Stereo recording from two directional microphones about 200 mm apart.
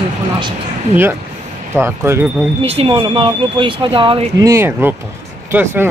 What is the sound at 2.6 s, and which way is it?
Speech, 30° right (ahead or behind).